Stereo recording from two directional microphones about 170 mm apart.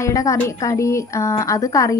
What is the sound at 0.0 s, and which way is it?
Speech, 20° left (ahead or behind).